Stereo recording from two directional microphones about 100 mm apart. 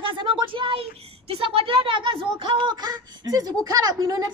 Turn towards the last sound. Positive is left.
turn(degrees=-40)  # may be behind; listen again after turning